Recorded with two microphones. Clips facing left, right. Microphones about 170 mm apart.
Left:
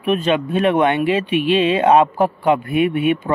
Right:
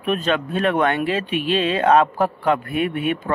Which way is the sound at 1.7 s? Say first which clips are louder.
Even; 10° left (ahead or behind).